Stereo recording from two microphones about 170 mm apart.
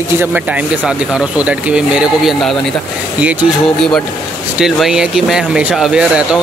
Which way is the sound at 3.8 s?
5° left (ahead or behind).